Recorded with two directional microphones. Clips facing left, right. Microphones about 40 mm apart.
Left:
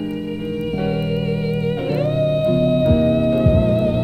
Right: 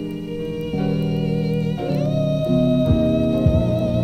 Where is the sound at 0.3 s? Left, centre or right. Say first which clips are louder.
Left 2 dB; centre.